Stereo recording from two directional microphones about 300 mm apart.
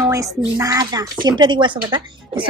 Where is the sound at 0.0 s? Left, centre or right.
Centre.